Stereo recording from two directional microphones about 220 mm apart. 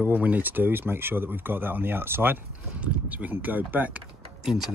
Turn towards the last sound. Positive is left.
turn(degrees=0)  # may be behind; listen again after turning